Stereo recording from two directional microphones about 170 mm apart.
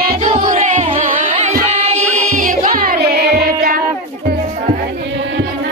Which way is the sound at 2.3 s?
55° right (ahead or behind).